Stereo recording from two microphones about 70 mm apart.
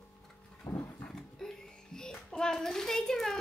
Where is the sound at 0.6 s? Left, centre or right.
Left.